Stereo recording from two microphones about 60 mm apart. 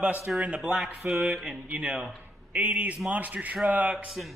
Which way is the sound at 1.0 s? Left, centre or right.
Centre.